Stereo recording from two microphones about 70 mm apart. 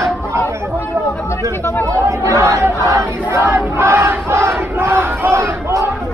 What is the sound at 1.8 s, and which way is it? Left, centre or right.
Chatter, right.